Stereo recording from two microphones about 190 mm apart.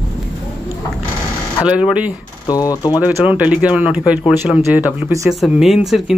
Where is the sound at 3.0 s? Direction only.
10° right (ahead or behind).